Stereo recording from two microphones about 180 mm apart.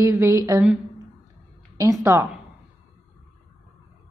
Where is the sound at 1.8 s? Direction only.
15° right (ahead or behind).